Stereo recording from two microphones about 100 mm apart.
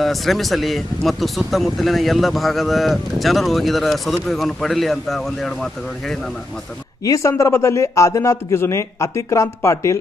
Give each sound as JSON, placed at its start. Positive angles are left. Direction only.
{"t": 0.0, "sound": "speech", "side_deg": 0}
{"t": 7.1, "sound": "a man's voice", "side_deg": 30}